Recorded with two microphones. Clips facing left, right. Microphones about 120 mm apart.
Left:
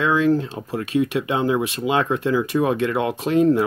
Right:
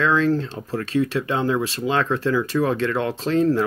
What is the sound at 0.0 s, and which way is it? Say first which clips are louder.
Speech: left 1 dB; 15° left (ahead or behind).